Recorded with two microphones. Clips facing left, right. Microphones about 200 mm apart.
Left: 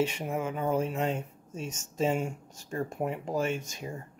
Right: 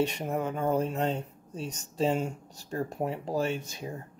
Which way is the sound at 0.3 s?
35° right (ahead or behind).